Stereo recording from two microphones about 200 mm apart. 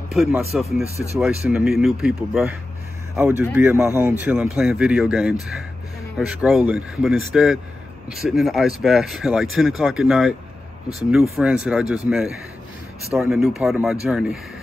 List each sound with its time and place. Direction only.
0.1 s speech: centre (ahead or behind)
0.8 s speech: 15° left (ahead or behind)
1.2 s speech: 5° right (ahead or behind)
11.3 s speech: 5° right (ahead or behind)